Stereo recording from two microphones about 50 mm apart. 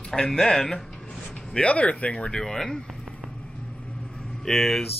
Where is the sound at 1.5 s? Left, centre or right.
Left.